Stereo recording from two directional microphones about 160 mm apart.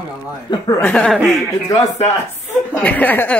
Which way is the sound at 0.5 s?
20° left (ahead or behind).